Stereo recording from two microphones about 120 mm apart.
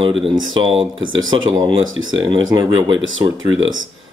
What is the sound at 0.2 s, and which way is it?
Speech, 45° right (ahead or behind).